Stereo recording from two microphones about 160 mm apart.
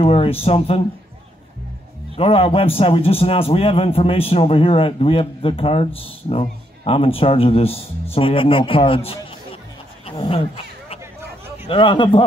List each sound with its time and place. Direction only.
0.0 s a man's voice: 35° left (ahead or behind)
2.1 s a man's voice: 35° left (ahead or behind)
10.0 s a sound: 30° left (ahead or behind)
11.6 s a man's voice: 30° left (ahead or behind)